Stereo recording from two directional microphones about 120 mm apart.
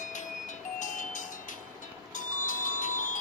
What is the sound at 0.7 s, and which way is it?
Music, 90° left.